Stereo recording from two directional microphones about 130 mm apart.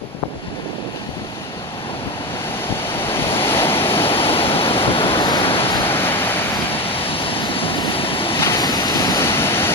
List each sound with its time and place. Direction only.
3.0 s waves: 15° left (ahead or behind)
4.0 s waves: 45° left (ahead or behind)
5.9 s waves: 15° left (ahead or behind)
6.9 s waves: 45° left (ahead or behind)
8.5 s vehicle: 30° left (ahead or behind)
9.2 s waves: 20° left (ahead or behind)